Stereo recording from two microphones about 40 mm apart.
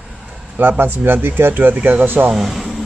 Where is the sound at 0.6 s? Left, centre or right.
Right.